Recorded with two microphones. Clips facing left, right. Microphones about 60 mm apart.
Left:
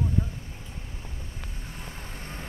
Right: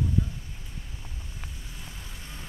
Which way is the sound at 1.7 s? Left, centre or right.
Left.